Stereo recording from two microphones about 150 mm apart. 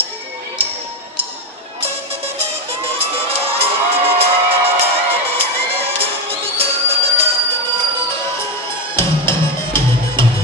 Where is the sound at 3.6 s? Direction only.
40° right (ahead or behind).